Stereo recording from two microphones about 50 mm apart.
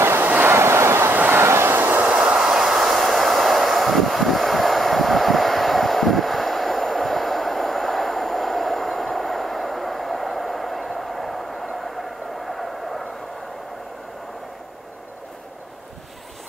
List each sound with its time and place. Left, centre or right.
0.2 s vehicle: right
0.5 s vehicle: right
1.1 s train: right
1.4 s train: right
1.8 s train: right
2.0 s train: centre